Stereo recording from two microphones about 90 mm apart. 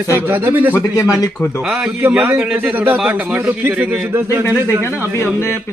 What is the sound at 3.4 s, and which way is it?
A man's voice, 25° right (ahead or behind).